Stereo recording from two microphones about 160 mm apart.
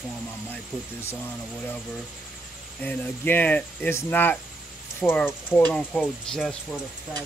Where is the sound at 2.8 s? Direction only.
10° left (ahead or behind).